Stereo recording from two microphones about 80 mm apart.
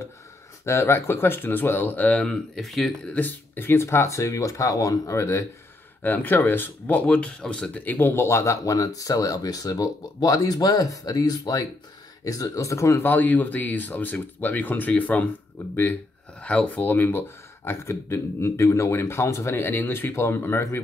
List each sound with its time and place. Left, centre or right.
0.7 s speech: left; by 2.3 s centre
2.5 s speech: centre
3.1 s speech: left
6.0 s speech: left
7.8 s speech: left
13.0 s speech: left